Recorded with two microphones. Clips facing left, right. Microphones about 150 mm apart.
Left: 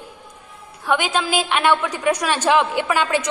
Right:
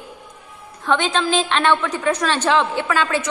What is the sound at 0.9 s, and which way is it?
A woman's voice, 10° left (ahead or behind).